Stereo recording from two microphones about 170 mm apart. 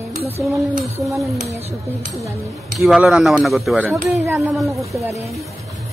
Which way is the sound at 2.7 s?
Centre (ahead or behind).